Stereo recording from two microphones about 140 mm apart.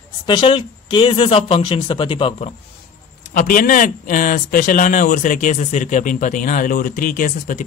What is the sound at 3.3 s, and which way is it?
Speech, 80° left.